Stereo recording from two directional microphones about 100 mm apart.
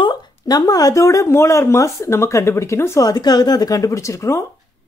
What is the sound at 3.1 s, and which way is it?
Speech, 40° left (ahead or behind).